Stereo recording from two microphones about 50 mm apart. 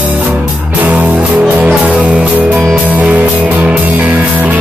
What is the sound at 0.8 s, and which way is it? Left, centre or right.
Music, right.